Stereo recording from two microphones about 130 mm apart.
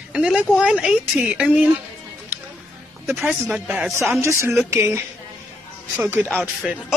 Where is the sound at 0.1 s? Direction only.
5° right (ahead or behind).